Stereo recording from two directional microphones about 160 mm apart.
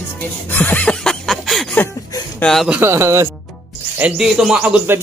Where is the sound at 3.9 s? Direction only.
5° right (ahead or behind).